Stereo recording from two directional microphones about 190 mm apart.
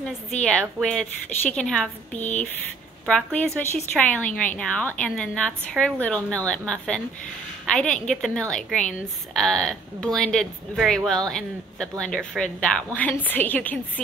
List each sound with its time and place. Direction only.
0.4 s a woman's voice: 5° left (ahead or behind)